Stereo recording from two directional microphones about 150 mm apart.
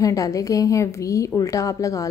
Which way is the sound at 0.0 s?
25° left (ahead or behind).